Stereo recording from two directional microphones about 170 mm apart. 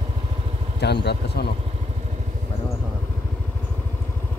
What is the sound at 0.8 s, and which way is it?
Speech, 80° left.